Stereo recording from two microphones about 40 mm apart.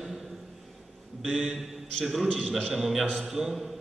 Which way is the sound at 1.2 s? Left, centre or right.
Centre.